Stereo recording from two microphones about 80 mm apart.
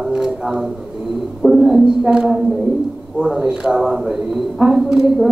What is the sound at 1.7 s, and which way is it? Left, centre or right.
A woman's voice, centre.